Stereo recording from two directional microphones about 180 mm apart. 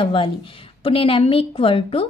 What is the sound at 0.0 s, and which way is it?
A woman's voice, 30° left (ahead or behind).